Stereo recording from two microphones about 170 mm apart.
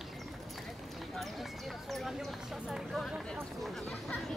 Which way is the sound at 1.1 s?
Centre (ahead or behind).